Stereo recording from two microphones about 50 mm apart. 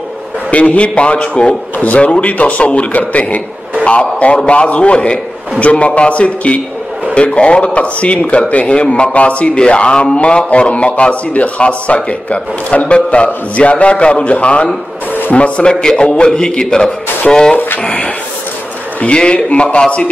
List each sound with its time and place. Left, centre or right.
0.5 s a man's voice: left
17.8 s speech: left